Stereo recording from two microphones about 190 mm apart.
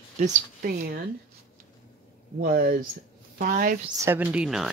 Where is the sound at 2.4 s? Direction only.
50° right (ahead or behind).